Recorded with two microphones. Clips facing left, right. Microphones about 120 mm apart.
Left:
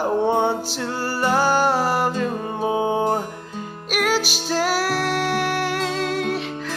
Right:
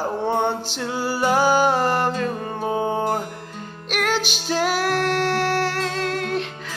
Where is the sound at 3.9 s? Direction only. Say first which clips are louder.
Left 2 dB; 5° left (ahead or behind).